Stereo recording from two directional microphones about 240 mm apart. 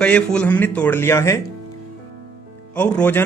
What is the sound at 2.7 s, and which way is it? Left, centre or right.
Speech, centre.